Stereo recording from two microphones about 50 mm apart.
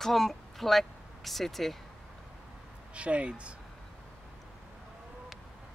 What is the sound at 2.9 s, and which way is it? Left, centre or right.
Speech, right.